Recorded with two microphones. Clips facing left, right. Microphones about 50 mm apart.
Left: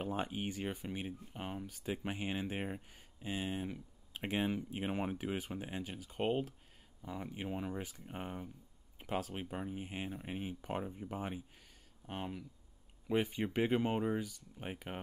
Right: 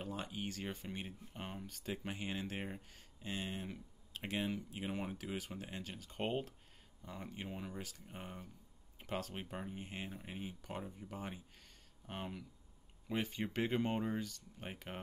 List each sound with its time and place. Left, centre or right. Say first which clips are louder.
0.0 s speech: left 5 dB; left; by 2.0 s centre
2.0 s speech: left 4 dB; centre
4.1 s speech: left 4 dB; centre
9.0 s speech: left 4 dB; centre
10.3 s speech: left 7 dB; left
12.1 s speech: left 3 dB; centre
13.1 s speech: left 5 dB; centre